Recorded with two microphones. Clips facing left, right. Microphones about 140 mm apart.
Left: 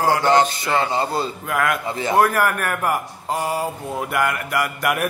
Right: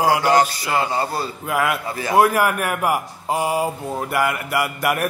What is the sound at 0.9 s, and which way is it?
Speech, 25° left (ahead or behind).